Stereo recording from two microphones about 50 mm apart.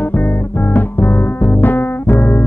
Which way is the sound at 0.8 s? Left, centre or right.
Left.